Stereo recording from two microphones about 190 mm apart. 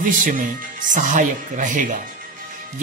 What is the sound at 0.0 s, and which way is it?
Speech, 45° right (ahead or behind).